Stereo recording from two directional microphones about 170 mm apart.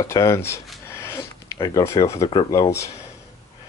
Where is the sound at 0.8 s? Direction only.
15° left (ahead or behind).